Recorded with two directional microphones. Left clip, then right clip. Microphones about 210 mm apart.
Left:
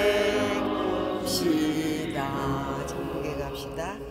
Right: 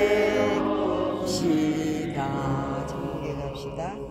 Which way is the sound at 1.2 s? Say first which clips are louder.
Right 1 dB; 10° left (ahead or behind).